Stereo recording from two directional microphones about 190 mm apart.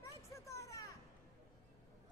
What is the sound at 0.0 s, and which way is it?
Children playing, 15° left (ahead or behind).